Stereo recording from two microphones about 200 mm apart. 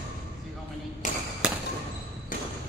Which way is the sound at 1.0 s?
40° left (ahead or behind).